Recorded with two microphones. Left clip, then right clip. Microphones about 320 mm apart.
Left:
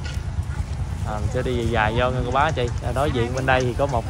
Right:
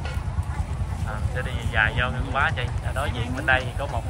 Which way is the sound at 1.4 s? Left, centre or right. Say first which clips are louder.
Left 1 dB; centre.